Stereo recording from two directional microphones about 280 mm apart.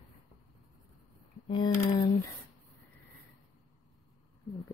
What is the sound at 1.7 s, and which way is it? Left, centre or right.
Speech, centre.